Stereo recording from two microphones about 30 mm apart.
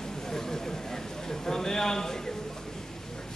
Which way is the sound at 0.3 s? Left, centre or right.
Centre.